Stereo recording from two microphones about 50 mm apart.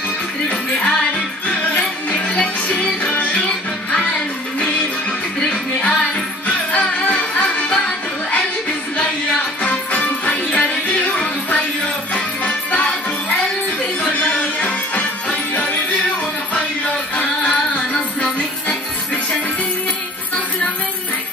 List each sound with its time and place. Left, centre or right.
1.5 s music: left
5.5 s music: left
9.6 s music: left
12.1 s music: left
14.1 s music: left
17.4 s music: left